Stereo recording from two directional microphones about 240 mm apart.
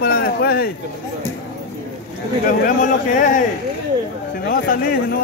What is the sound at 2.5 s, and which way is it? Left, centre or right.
Speech, left.